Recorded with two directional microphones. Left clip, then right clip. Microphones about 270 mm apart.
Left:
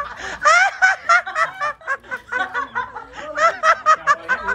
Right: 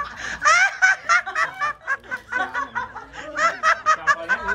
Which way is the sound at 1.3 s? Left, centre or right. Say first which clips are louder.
Left 2 dB; centre.